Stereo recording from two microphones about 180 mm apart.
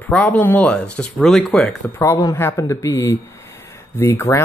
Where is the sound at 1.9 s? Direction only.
15° left (ahead or behind).